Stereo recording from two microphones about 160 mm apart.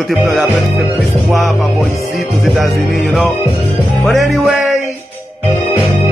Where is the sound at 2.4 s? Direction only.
Centre (ahead or behind).